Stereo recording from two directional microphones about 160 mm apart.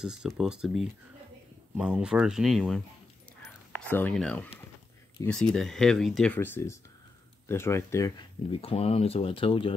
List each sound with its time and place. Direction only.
0.0 s speech: 5° right (ahead or behind)
3.7 s speech: 10° left (ahead or behind)
8.5 s speech: 35° left (ahead or behind)